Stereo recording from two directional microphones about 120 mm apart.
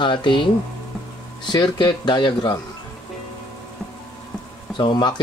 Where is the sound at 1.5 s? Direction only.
40° left (ahead or behind).